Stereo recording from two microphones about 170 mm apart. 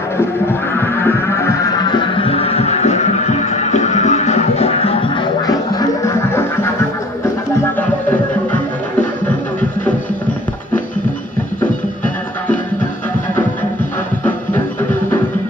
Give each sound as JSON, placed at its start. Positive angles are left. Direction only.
{"t": 0.7, "sound": "music", "side_deg": 15}
{"t": 1.9, "sound": "music", "side_deg": 30}
{"t": 5.7, "sound": "a sound", "side_deg": 20}